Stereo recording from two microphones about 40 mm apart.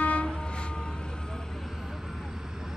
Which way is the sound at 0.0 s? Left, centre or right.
Left.